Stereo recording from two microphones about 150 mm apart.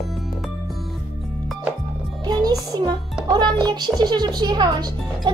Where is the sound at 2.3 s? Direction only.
25° right (ahead or behind).